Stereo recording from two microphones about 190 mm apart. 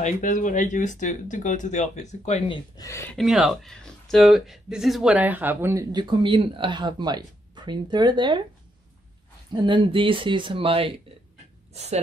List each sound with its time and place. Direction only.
0.0 s speech: 40° left (ahead or behind); by 2.9 s 25° left (ahead or behind)
2.9 s speech: 15° left (ahead or behind)
3.2 s speech: centre (ahead or behind); by 8.4 s 25° right (ahead or behind)
9.5 s a woman's voice: 25° right (ahead or behind)